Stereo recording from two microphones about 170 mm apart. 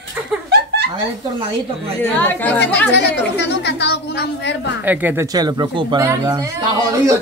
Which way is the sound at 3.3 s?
80° left.